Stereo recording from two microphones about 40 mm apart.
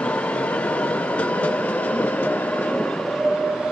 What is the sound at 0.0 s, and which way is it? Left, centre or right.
Train, left.